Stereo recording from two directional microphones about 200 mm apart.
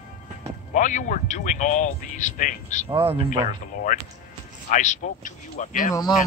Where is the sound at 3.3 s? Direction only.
40° left (ahead or behind).